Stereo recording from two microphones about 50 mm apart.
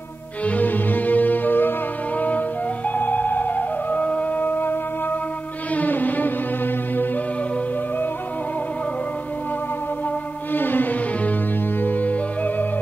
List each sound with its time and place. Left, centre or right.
0.5 s music: left
5.8 s music: left
10.5 s music: left